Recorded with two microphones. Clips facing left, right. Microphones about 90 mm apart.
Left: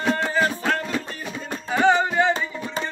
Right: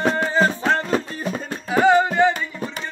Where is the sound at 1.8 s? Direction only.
5° right (ahead or behind).